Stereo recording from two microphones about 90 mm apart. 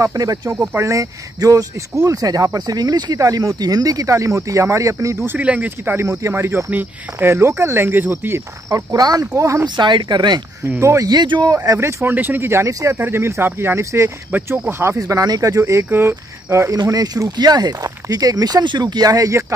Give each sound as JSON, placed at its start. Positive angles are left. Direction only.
{"t": 0.0, "sound": "speech", "side_deg": -40}
{"t": 5.4, "sound": "speech", "side_deg": -15}
{"t": 5.9, "sound": "speech", "side_deg": -30}
{"t": 9.8, "sound": "speech", "side_deg": -60}
{"t": 10.8, "sound": "speech", "side_deg": -30}
{"t": 11.1, "sound": "speech", "side_deg": -55}
{"t": 11.5, "sound": "speech", "side_deg": -35}